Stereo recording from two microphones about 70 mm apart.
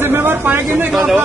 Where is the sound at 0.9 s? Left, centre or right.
Centre.